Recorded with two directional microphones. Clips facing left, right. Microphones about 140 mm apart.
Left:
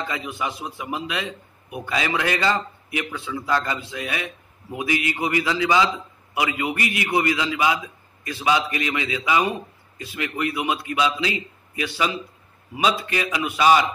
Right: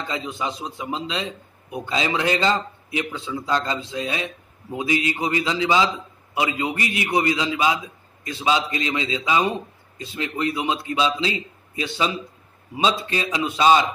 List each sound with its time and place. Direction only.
0.1 s a man's voice: 25° right (ahead or behind)